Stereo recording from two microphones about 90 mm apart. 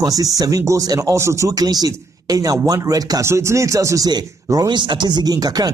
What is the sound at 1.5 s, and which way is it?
Speech, 45° right (ahead or behind).